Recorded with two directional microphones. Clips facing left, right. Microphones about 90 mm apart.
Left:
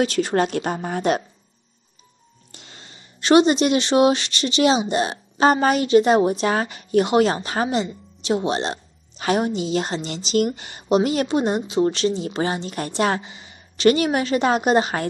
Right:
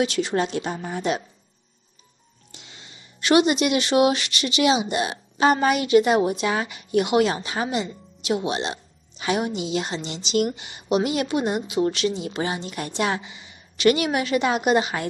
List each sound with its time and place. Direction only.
0.0 s speech: 45° left (ahead or behind)
2.5 s speech: 45° left (ahead or behind)